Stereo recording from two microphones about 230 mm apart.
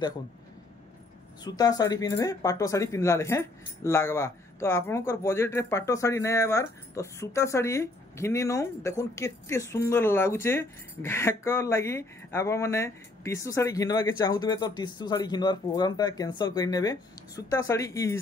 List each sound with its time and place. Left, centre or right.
1.4 s speech: centre